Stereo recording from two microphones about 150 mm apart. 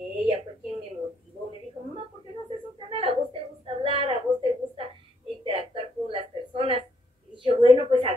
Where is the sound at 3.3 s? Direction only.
40° right (ahead or behind).